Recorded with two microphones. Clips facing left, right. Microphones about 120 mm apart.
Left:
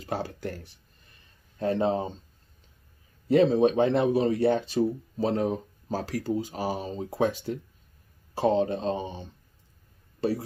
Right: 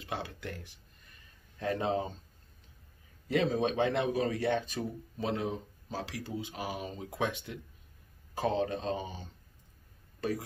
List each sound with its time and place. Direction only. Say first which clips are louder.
0.0 s speech: left 7 dB; 40° left (ahead or behind)
3.3 s speech: left 9 dB; 30° left (ahead or behind)